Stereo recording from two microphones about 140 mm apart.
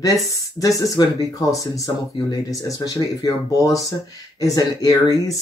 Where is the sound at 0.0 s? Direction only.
25° left (ahead or behind).